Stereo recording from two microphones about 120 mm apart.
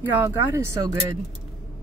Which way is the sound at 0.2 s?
20° right (ahead or behind).